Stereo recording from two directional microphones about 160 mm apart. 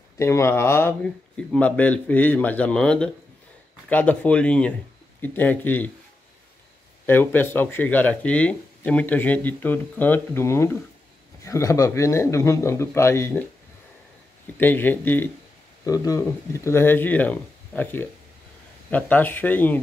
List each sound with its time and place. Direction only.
0.2 s speech: 15° left (ahead or behind)
1.0 s speech: 5° left (ahead or behind)
7.1 s speech: 15° left (ahead or behind)
14.6 s speech: 10° left (ahead or behind)